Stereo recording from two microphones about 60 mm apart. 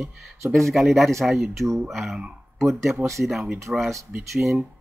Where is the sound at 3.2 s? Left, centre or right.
Centre.